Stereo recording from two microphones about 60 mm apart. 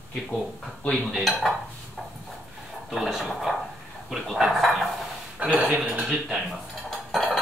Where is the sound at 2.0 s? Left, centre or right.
Centre.